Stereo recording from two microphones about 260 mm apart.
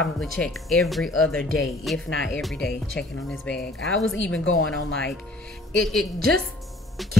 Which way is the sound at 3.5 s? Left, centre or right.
Left.